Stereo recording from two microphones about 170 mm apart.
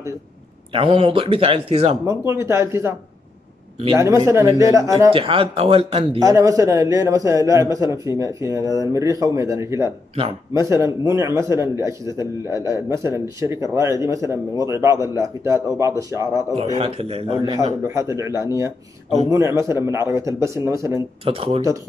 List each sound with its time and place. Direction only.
0.7 s speech: 30° right (ahead or behind)
2.0 s a man's voice: 15° right (ahead or behind)
3.9 s a man's voice: 15° right (ahead or behind)
5.1 s speech: 30° right (ahead or behind)
6.2 s a man's voice: 20° right (ahead or behind)
16.7 s speech: 35° right (ahead or behind)
17.8 s a man's voice: 15° right (ahead or behind)
21.3 s speech: 35° right (ahead or behind)